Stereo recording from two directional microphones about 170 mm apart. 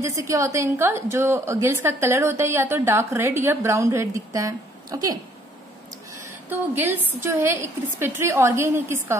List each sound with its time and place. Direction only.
0.0 s a woman's voice: 15° right (ahead or behind)
6.7 s a woman's voice: 10° right (ahead or behind)